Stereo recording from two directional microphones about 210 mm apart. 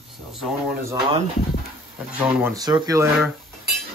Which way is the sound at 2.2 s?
15° right (ahead or behind).